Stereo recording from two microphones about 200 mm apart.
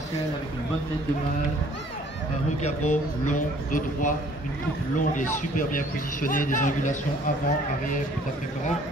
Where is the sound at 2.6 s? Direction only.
40° left (ahead or behind).